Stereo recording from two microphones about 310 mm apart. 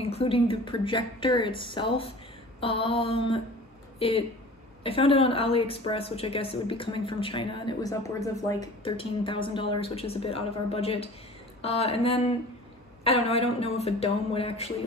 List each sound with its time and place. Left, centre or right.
0.0 s a woman's voice: centre